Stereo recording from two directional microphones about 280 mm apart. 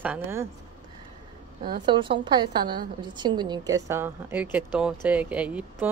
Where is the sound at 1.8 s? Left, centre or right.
Centre.